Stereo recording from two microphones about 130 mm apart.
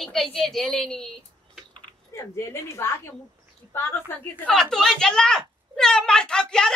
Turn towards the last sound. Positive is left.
turn(degrees=5)  # may be behind; listen again after turning